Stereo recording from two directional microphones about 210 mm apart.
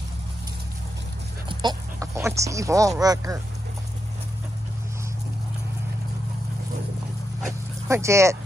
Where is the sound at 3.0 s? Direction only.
15° right (ahead or behind).